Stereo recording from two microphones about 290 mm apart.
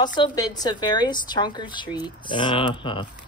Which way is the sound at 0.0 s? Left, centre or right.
Centre.